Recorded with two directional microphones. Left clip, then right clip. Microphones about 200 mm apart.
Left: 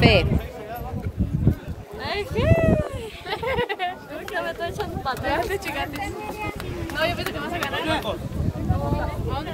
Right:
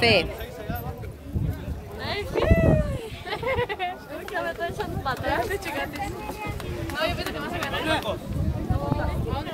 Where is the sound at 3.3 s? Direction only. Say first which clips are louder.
Left 2 dB; 55° left (ahead or behind).